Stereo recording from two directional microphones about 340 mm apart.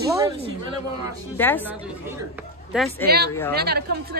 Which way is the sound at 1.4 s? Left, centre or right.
Centre.